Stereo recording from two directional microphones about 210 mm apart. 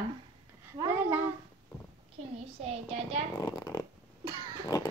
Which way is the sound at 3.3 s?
20° left (ahead or behind).